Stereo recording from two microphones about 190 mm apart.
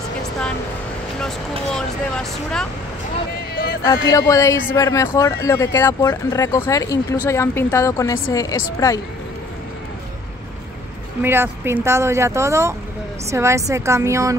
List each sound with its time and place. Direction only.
1.7 s speech: 5° left (ahead or behind)
3.8 s speech: 20° left (ahead or behind)
11.2 s speech: 10° right (ahead or behind)